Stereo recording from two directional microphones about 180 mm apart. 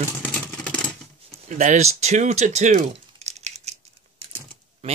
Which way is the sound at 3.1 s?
35° right (ahead or behind).